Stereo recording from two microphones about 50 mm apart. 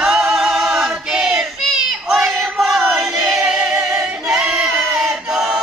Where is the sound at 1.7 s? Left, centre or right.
Centre.